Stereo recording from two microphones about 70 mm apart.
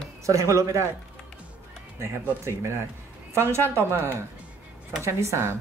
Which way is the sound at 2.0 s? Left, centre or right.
Right.